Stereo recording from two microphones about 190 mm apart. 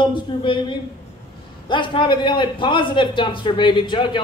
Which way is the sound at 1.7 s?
25° left (ahead or behind).